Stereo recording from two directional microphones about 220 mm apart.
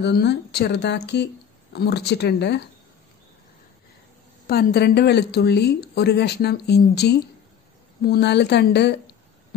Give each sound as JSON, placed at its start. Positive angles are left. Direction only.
{"t": 0.0, "sound": "speech", "side_deg": 50}
{"t": 4.5, "sound": "speech", "side_deg": 45}